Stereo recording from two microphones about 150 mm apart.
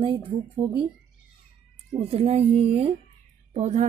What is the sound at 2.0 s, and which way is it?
Speech, 40° right (ahead or behind).